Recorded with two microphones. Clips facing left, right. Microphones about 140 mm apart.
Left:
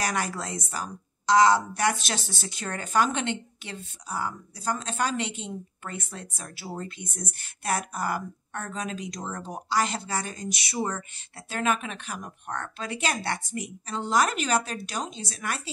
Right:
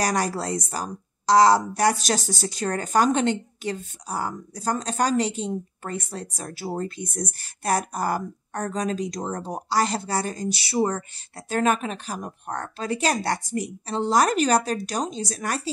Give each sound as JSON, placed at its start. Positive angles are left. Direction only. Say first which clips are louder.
{"t": 0.0, "sound": "a woman's voice", "louder": "right 5 dB", "side_deg": -40}